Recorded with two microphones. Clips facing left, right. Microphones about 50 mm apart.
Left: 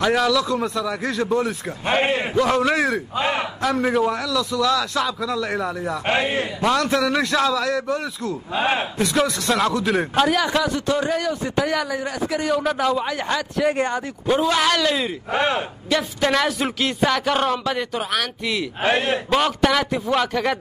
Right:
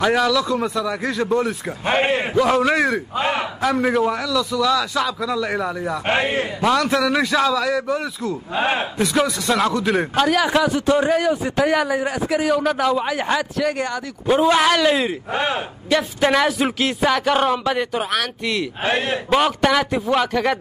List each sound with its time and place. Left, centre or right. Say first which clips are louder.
0.0 s a man's voice: right 1 dB; centre
6.0 s a man's voice: right 1 dB; centre
6.6 s a man's voice: right 2 dB; centre
10.4 s a man's voice: right 3 dB; centre
12.3 s a man's voice: right 2 dB; centre
13.7 s speech: left 2 dB; left
14.4 s a man's voice: right 5 dB; centre